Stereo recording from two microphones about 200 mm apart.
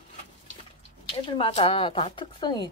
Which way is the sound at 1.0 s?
25° left (ahead or behind).